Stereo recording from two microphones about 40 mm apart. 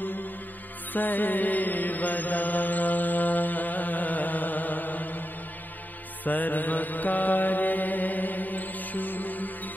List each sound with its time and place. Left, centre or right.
0.9 s mantra: left
6.2 s mantra: left